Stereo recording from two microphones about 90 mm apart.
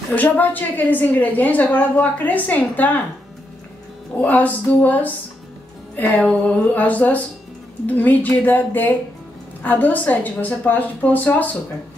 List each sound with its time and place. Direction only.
0.1 s a woman's voice: 20° left (ahead or behind)
4.2 s a woman's voice: 20° left (ahead or behind)
5.9 s a sound: 15° left (ahead or behind)
7.8 s a woman's voice: 20° left (ahead or behind)